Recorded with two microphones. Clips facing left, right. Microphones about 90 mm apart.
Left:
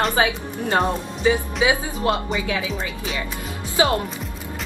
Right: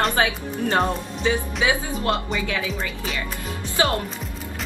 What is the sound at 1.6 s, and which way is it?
Speech, 20° left (ahead or behind).